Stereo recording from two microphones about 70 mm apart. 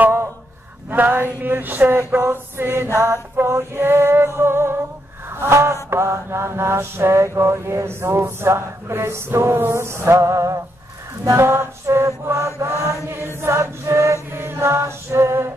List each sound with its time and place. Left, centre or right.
0.0 s a sound: right
0.8 s mantra: right
13.1 s mantra: right